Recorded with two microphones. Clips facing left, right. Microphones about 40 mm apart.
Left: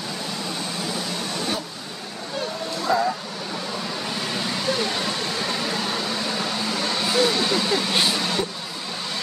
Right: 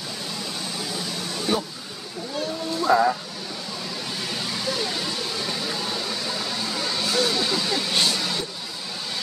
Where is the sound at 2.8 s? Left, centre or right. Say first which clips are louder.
Right 3 dB; centre.